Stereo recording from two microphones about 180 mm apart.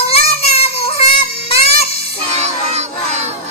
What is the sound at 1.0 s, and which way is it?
Music, 30° left (ahead or behind).